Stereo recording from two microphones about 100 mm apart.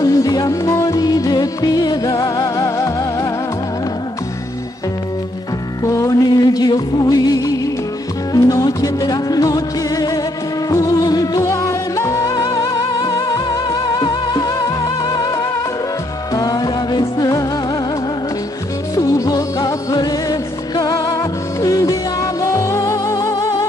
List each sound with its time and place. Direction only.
0.0 s music: 35° left (ahead or behind)
5.9 s music: 35° left (ahead or behind)
18.9 s music: 35° left (ahead or behind)